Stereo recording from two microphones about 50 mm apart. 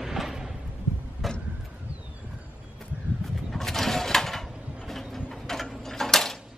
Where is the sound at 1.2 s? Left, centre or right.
Centre.